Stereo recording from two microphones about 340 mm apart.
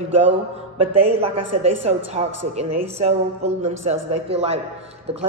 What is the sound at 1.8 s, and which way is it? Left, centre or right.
A man's voice, centre.